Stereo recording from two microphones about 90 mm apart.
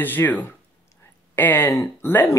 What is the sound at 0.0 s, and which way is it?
Speech, 20° left (ahead or behind).